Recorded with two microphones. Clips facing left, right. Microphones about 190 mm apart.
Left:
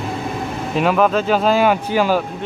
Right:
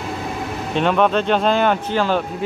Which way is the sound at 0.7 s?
5° left (ahead or behind).